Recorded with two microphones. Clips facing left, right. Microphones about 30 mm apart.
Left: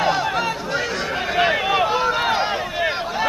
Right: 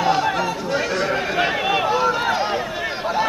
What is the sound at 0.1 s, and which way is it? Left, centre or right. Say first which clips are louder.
Chatter: right 2 dB; centre.